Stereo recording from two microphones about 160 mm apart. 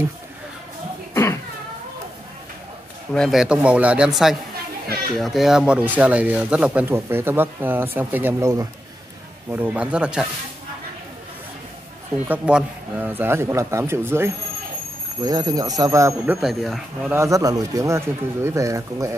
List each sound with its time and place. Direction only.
3.1 s a man's voice: centre (ahead or behind)
12.3 s speech: 10° right (ahead or behind)
16.3 s a man's voice: centre (ahead or behind)
17.1 s speech: 20° right (ahead or behind)